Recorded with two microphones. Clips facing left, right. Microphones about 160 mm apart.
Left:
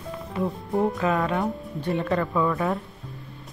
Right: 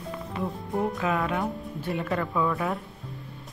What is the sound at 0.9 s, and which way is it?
A man's voice, centre (ahead or behind).